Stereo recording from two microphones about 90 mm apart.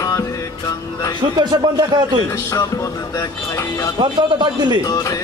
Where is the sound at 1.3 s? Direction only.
55° right (ahead or behind).